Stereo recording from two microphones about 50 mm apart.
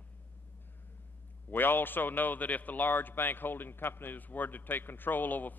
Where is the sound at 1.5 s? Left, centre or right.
Left.